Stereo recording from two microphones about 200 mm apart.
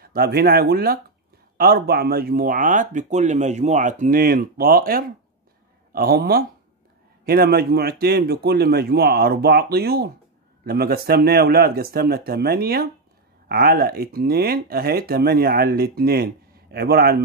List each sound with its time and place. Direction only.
0.0 s speech: 50° right (ahead or behind)